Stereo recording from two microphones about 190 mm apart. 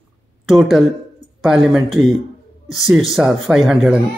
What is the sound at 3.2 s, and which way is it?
Speech, centre (ahead or behind).